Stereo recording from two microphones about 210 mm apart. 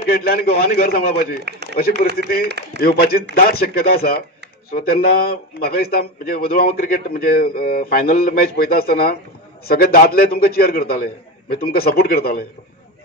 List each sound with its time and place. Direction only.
0.0 s a man's voice: 45° left (ahead or behind)
1.4 s speech: 55° right (ahead or behind)
1.8 s a man's voice: 45° left (ahead or behind)
2.4 s a man's voice: 55° right (ahead or behind)
3.0 s a man's voice: 45° left (ahead or behind)